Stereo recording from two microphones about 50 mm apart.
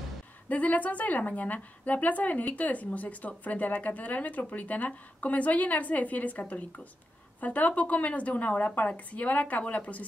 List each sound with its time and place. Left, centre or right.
0.5 s a woman's voice: left